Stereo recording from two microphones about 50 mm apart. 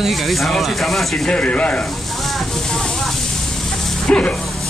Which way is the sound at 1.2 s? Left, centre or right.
Left.